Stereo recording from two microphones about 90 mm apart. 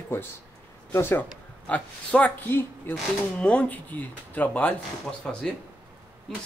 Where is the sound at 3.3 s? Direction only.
10° left (ahead or behind).